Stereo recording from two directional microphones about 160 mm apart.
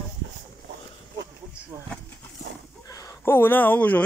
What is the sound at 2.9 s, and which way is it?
Speech, 20° left (ahead or behind).